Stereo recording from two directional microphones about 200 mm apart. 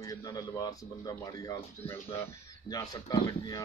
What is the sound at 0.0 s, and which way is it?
Speech, 20° left (ahead or behind).